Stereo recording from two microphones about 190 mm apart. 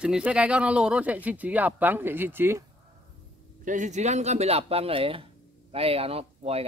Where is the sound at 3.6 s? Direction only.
40° right (ahead or behind).